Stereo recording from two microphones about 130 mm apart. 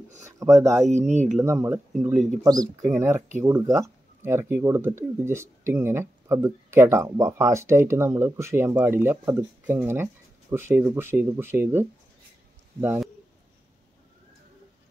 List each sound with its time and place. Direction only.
0.4 s speech: 25° right (ahead or behind)
0.8 s speech: 60° right (ahead or behind)
1.4 s speech: 20° right (ahead or behind)
2.9 s speech: 20° right (ahead or behind)